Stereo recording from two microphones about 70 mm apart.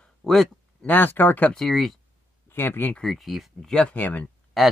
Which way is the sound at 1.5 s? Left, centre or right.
Centre.